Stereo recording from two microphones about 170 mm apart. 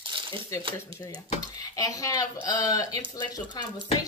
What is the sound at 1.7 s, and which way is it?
Speech, 20° left (ahead or behind).